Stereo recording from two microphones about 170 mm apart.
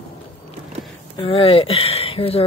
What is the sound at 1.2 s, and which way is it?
Speech, 35° left (ahead or behind).